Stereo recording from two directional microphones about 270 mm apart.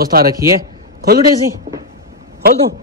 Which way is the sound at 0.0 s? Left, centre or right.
Right.